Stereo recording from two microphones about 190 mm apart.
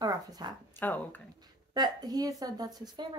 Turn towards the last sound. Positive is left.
turn(degrees=-20)  # may be behind; listen again after turning